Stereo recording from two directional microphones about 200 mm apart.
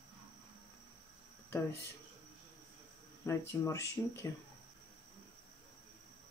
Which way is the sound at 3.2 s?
15° left (ahead or behind).